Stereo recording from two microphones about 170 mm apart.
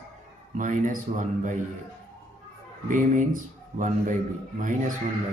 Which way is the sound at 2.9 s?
50° right (ahead or behind).